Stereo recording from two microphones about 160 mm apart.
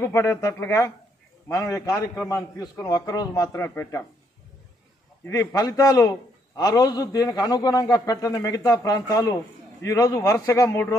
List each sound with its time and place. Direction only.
0.0 s a man's voice: 15° left (ahead or behind)
5.2 s a man's voice: 20° left (ahead or behind)